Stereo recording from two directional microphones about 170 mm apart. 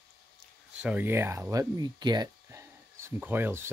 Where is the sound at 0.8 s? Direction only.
10° right (ahead or behind).